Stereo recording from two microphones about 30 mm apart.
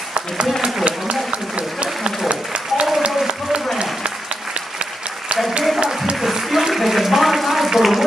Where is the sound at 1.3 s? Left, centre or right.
Right.